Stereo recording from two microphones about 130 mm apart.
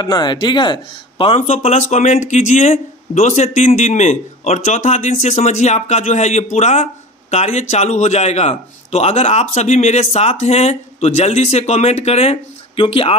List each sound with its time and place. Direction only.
0.0 s speech: 35° left (ahead or behind)
1.4 s speech: 60° left (ahead or behind); by 13.1 s 40° left (ahead or behind)